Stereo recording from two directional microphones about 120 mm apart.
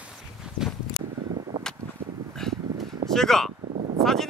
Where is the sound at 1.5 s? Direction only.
40° right (ahead or behind).